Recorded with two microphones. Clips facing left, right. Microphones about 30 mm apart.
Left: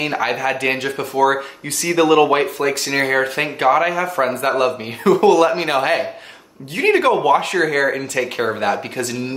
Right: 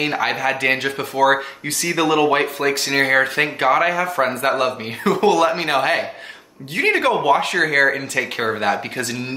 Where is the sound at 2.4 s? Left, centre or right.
Right.